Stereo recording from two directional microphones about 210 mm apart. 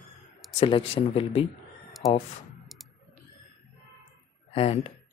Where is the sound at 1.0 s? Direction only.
25° left (ahead or behind).